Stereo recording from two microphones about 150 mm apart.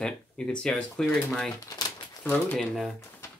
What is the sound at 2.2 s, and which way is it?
Speech, 10° left (ahead or behind).